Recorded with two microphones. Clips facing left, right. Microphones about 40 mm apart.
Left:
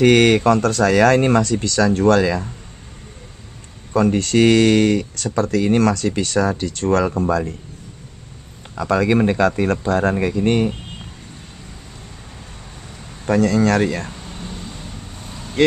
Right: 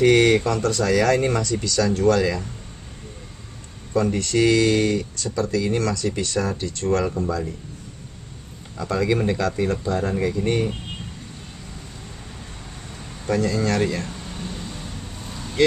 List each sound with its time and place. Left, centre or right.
0.0 s speech: left
3.9 s speech: left
8.7 s speech: left
9.1 s speech: left
13.3 s speech: left
14.1 s vehicle: centre